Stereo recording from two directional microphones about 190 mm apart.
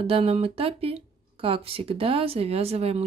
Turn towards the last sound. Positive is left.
turn(degrees=-30)  # may be behind; listen again after turning